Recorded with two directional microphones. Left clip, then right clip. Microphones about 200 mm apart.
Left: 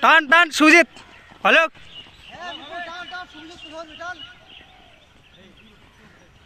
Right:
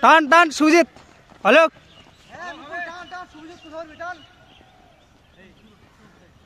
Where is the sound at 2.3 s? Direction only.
30° left (ahead or behind).